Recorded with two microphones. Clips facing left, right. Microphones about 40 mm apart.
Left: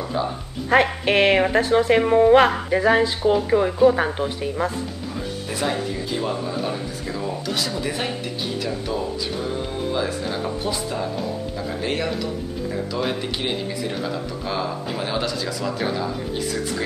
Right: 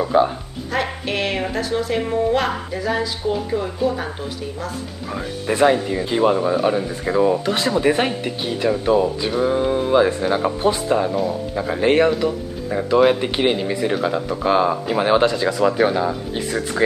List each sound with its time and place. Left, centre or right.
0.0 s speech: right
0.7 s a woman's voice: left
5.5 s speech: right
13.1 s speech: right